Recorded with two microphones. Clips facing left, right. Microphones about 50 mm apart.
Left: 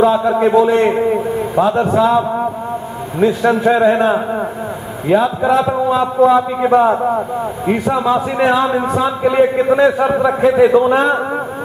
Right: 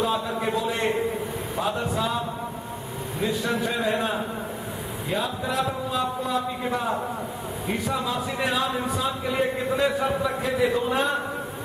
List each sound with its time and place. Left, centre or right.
0.0 s a man's voice: left
1.6 s a man's voice: left
3.3 s a man's voice: left
9.9 s a man's voice: left
10.5 s a man's voice: left